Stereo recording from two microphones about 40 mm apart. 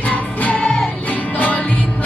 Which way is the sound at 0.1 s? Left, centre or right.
Left.